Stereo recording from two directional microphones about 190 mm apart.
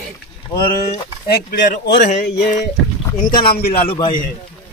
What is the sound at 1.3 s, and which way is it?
Speech, 55° left (ahead or behind).